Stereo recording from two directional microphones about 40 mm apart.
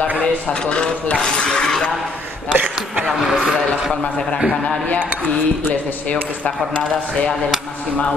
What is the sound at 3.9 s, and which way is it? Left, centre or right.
Speech, centre.